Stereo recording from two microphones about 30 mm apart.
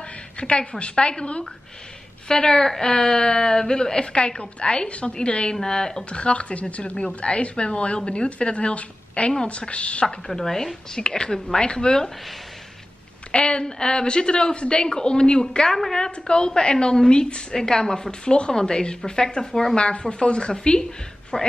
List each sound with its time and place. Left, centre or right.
0.4 s speech: left
2.2 s a woman's voice: left
5.6 s a woman's voice: centre
6.0 s speech: left
10.0 s speech: centre
11.0 s a woman's voice: left
13.3 s a woman's voice: left
15.7 s speech: centre
16.0 s a woman's voice: left
19.7 s speech: left